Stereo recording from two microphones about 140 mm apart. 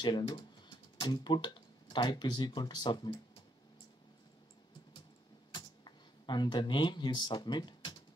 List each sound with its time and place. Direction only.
0.0 s speech: 30° left (ahead or behind)
5.5 s computer keyboard: 30° left (ahead or behind)